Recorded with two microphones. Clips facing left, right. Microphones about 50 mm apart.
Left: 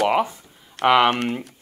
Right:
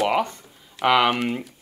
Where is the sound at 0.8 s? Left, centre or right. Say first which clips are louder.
Left 2 dB; left.